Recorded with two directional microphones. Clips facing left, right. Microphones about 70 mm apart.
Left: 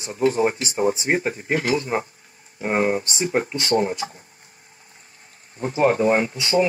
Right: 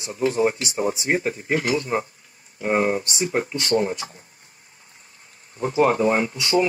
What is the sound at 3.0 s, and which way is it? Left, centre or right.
Speech, left.